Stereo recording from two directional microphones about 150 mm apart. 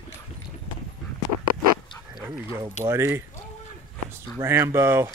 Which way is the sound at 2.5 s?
20° right (ahead or behind).